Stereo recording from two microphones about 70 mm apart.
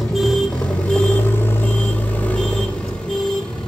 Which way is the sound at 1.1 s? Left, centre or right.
Left.